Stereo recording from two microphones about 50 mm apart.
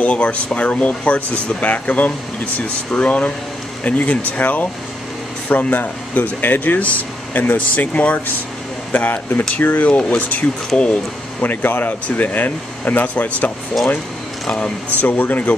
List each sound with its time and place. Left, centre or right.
0.0 s speech: left
9.8 s speech: left
10.7 s speech: centre
11.4 s speech: left
15.0 s speech: left